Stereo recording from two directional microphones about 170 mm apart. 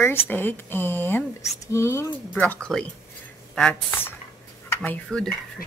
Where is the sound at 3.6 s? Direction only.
5° left (ahead or behind).